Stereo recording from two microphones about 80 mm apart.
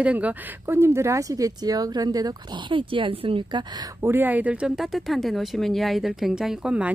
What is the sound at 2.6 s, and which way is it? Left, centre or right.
Speech, right.